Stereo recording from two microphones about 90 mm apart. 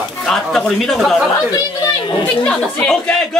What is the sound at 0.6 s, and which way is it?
Speech, 5° left (ahead or behind).